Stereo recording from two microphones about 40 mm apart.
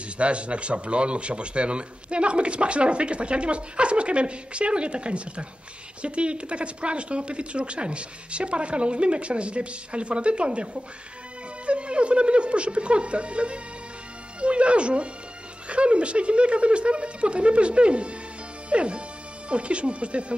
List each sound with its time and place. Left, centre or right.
0.2 s a man's voice: right